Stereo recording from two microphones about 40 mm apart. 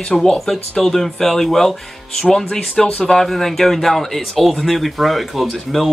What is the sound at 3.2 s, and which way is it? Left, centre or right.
Speech, centre.